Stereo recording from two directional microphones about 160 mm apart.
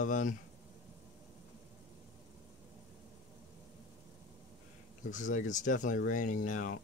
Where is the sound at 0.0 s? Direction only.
55° left (ahead or behind).